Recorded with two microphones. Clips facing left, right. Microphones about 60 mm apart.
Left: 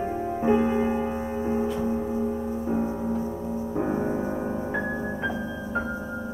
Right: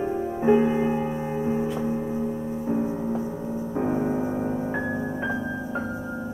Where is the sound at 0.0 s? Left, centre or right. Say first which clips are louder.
Right 1 dB; centre.